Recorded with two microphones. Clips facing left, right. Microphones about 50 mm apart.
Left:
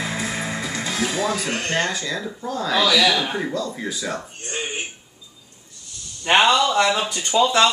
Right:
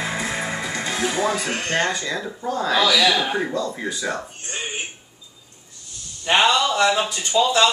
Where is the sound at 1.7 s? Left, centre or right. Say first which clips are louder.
Right 2 dB; centre.